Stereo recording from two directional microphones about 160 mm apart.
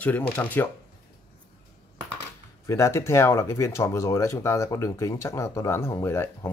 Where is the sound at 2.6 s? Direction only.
20° left (ahead or behind).